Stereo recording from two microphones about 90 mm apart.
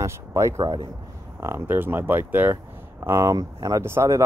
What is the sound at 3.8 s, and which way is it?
Speech, 30° right (ahead or behind).